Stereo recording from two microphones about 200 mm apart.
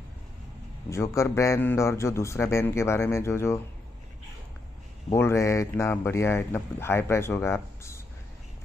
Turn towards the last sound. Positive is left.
turn(degrees=15)  # may be behind; listen again after turning